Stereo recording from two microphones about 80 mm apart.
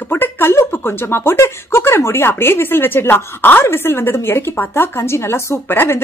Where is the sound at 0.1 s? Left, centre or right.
Left.